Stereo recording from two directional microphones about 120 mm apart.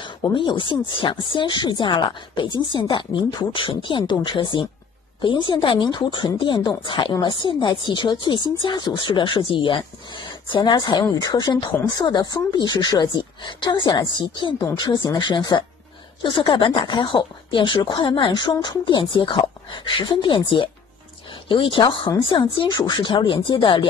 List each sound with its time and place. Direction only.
0.0 s speech: 40° left (ahead or behind)